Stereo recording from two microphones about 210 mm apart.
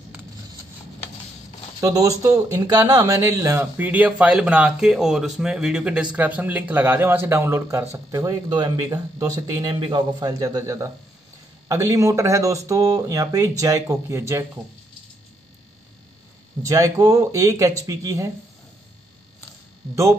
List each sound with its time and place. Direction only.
1.8 s speech: 15° right (ahead or behind)
16.6 s speech: 15° right (ahead or behind)